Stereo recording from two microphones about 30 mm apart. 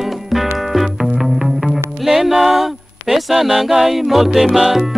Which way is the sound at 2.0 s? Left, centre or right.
Centre.